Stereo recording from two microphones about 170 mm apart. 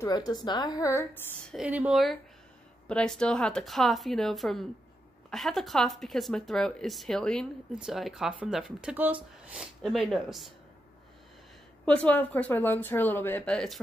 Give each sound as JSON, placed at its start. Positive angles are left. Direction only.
{"t": 0.0, "sound": "a woman's voice", "side_deg": 25}
{"t": 1.5, "sound": "a woman's voice", "side_deg": -5}
{"t": 11.8, "sound": "speech", "side_deg": 5}